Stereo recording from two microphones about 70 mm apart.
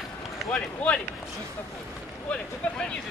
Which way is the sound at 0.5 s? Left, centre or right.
Centre.